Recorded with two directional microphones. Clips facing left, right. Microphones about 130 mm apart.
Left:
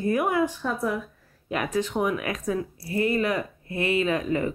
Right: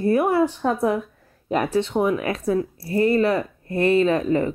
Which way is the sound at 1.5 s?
30° right (ahead or behind).